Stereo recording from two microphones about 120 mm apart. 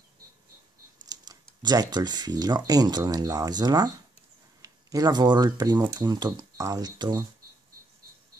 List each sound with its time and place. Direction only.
1.0 s speech: 35° right (ahead or behind)